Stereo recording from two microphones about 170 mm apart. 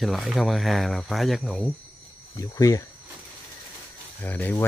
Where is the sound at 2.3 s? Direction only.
20° left (ahead or behind).